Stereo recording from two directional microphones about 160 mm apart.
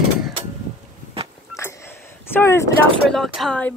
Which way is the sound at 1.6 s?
15° left (ahead or behind).